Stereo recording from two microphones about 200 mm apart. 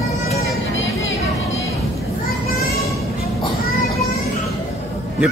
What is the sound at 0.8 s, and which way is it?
Music, 15° left (ahead or behind).